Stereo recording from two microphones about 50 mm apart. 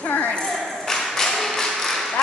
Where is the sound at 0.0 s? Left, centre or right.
Left.